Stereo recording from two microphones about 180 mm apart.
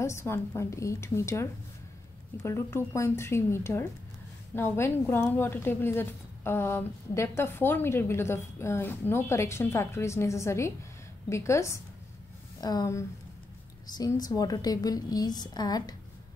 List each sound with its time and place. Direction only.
0.0 s a woman's voice: 15° left (ahead or behind)